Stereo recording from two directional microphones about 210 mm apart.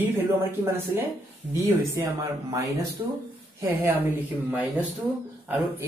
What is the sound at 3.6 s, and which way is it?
Speech, 10° right (ahead or behind).